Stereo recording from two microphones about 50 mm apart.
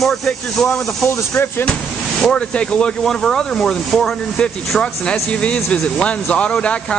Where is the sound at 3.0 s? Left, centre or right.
Centre.